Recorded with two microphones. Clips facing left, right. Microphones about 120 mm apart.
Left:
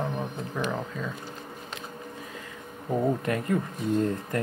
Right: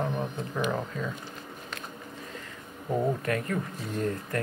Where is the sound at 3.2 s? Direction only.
20° left (ahead or behind).